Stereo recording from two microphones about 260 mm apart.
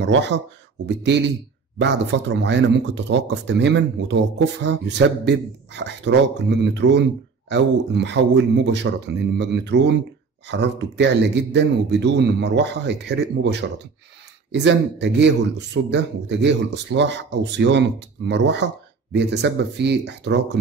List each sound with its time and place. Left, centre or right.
0.0 s speech: right